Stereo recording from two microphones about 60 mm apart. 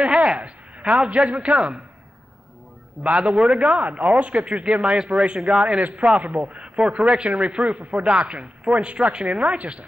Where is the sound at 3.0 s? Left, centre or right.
Right.